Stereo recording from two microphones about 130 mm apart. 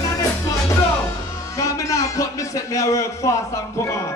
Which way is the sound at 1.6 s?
25° left (ahead or behind).